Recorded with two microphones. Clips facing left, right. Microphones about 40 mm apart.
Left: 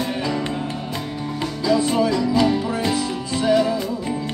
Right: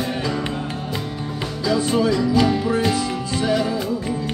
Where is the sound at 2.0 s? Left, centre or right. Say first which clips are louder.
Right 1 dB; right.